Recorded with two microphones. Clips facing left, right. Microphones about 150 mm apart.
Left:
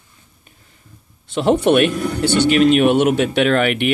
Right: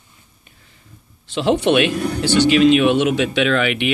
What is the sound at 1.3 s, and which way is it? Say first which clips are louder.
Speech: left 2 dB; 55° left (ahead or behind).